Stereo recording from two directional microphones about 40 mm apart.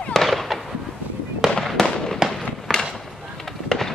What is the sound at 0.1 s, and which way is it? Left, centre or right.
Fireworks, centre.